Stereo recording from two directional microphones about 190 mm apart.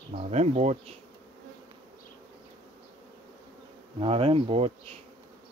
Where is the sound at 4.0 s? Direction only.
30° right (ahead or behind).